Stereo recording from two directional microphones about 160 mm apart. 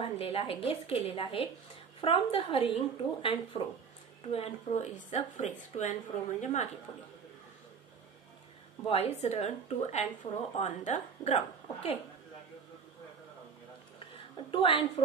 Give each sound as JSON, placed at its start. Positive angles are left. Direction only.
{"t": 0.0, "sound": "a woman's voice", "side_deg": 35}
{"t": 8.8, "sound": "a woman's voice", "side_deg": 40}
{"t": 10.2, "sound": "a woman's voice", "side_deg": 25}
{"t": 10.6, "sound": "speech", "side_deg": 50}
{"t": 14.5, "sound": "a woman's voice", "side_deg": 35}